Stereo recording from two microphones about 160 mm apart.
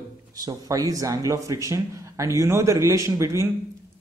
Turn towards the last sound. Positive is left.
turn(degrees=-20)  # may be behind; listen again after turning